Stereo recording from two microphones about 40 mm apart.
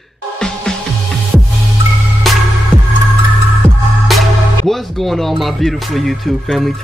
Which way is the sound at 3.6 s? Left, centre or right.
Right.